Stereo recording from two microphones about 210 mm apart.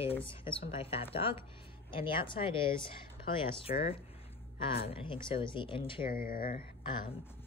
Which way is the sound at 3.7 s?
40° left (ahead or behind).